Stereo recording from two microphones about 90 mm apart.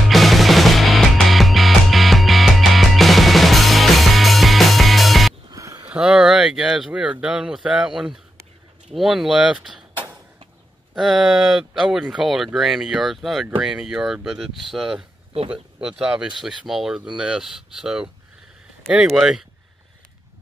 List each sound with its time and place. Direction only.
0.1 s music: centre (ahead or behind)
5.5 s a sound: 35° right (ahead or behind)
5.9 s speech: 10° right (ahead or behind)
11.0 s speech: 5° right (ahead or behind)